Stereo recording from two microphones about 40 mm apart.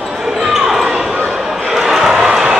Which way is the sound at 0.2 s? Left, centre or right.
Centre.